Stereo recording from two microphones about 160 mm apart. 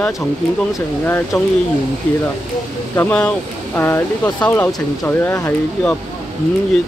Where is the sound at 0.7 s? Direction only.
15° left (ahead or behind).